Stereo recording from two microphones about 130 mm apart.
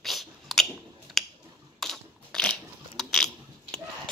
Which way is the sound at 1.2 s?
Centre (ahead or behind).